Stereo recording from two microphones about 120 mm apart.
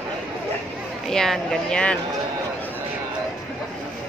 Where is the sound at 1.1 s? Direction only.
5° left (ahead or behind).